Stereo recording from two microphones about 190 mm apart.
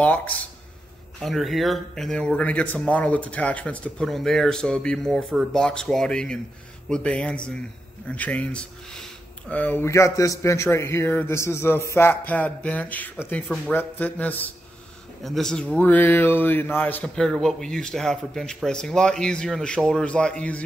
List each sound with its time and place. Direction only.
0.0 s speech: 10° left (ahead or behind)